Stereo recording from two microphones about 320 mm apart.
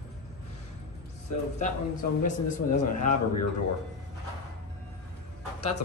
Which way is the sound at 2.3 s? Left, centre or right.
Left.